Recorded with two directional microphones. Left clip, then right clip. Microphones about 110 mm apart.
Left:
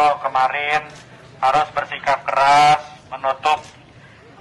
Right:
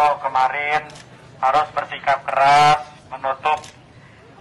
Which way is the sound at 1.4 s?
20° left (ahead or behind).